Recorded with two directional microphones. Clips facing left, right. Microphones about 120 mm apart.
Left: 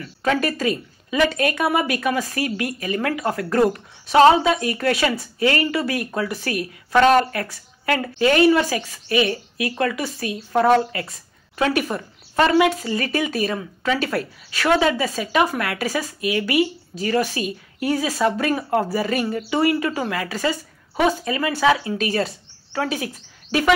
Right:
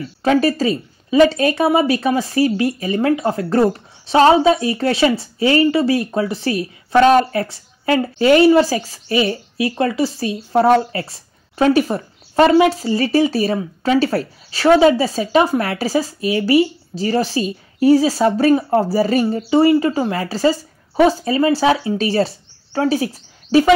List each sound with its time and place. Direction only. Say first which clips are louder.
0.0 s a woman's voice: right 6 dB; 30° right (ahead or behind)